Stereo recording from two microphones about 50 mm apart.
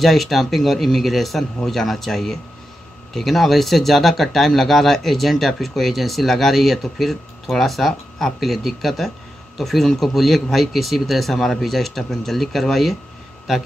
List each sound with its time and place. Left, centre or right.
0.0 s speech: centre